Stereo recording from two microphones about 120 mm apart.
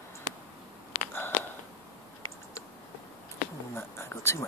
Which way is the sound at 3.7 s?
20° left (ahead or behind).